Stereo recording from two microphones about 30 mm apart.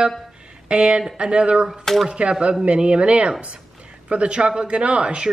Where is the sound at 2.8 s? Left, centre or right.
Right.